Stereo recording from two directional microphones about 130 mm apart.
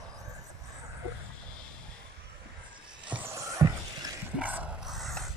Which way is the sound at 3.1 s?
15° right (ahead or behind).